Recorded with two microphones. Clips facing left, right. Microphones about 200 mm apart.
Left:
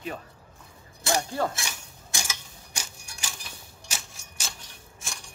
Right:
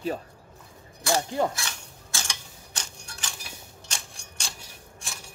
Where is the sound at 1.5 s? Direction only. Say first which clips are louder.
Even; 15° left (ahead or behind).